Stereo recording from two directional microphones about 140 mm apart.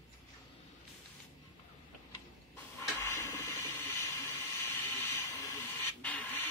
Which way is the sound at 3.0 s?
20° left (ahead or behind).